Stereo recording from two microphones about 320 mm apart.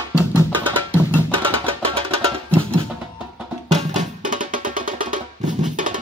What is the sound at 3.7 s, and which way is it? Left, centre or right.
Music, right.